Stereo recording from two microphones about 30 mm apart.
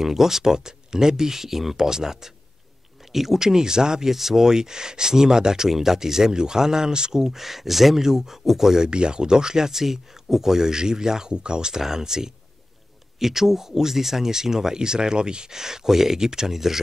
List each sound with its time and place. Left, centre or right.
0.0 s speech: centre
1.9 s speech: centre
4.1 s speech: centre
8.7 s speech: right
15.5 s speech: centre